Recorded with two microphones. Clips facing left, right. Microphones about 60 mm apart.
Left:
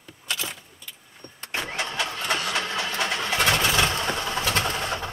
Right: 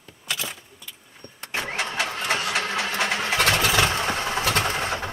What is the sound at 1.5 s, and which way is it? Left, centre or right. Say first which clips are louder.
Engine starting: right 2 dB; centre.